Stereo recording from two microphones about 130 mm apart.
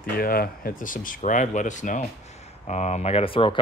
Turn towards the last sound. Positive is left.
turn(degrees=40)  # may be behind; listen again after turning